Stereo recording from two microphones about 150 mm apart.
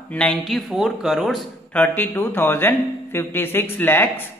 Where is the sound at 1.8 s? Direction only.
15° left (ahead or behind).